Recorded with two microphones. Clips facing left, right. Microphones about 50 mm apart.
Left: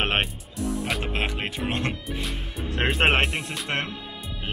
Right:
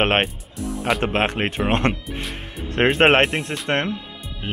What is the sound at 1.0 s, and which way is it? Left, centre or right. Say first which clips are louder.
Speech: right 7 dB; right.